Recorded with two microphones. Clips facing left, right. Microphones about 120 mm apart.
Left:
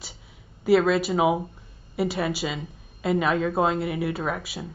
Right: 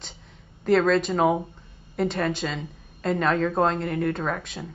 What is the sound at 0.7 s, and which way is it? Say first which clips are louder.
Speech: even; 5° left (ahead or behind).